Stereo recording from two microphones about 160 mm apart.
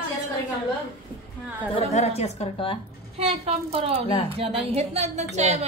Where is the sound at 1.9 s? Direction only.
40° left (ahead or behind).